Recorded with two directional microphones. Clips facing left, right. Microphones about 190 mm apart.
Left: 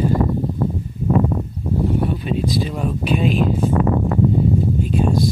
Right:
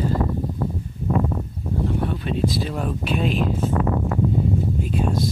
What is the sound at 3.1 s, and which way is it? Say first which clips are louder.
Speech: left 5 dB; centre (ahead or behind).